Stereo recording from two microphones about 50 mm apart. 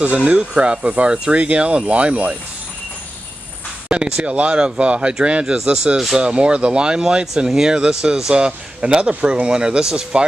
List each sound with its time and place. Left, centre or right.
0.2 s speech: right
3.9 s speech: right